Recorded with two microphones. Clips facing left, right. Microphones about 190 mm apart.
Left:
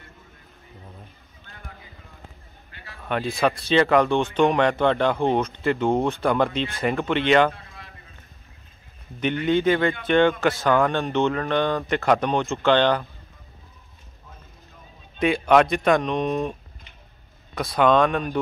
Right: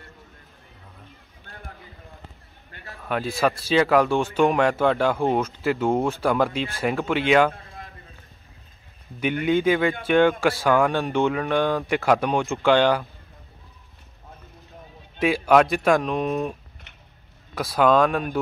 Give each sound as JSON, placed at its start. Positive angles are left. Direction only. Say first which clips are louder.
{"t": 3.0, "sound": "speech", "louder": "even", "side_deg": 0}
{"t": 7.5, "sound": "a sound", "louder": "right 3 dB", "side_deg": -45}
{"t": 9.2, "sound": "speech", "louder": "even", "side_deg": -10}
{"t": 15.1, "sound": "speech", "louder": "even", "side_deg": -5}
{"t": 17.6, "sound": "speech", "louder": "even", "side_deg": -5}